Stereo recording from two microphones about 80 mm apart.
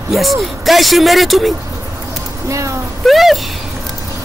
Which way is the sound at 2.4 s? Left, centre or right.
Right.